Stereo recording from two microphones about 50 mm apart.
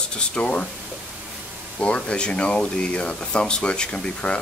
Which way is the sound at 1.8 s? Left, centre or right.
Left.